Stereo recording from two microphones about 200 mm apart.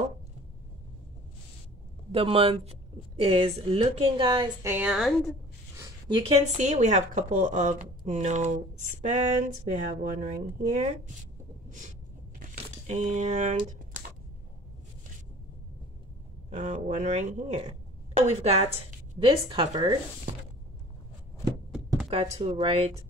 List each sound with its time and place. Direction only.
2.1 s a woman's voice: 30° right (ahead or behind)
4.6 s a woman's voice: 5° right (ahead or behind)
5.8 s a sound: 25° right (ahead or behind)
6.4 s a woman's voice: 35° right (ahead or behind)
12.4 s crumpling: 35° right (ahead or behind)
16.4 s a woman's voice: 40° right (ahead or behind); by 20.0 s 20° right (ahead or behind)
22.1 s a woman's voice: 30° right (ahead or behind)